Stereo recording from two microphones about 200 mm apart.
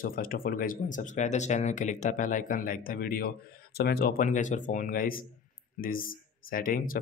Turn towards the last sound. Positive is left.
turn(degrees=45)  # may be behind; listen again after turning